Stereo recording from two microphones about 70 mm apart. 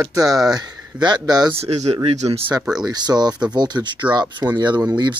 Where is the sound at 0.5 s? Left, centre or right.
Right.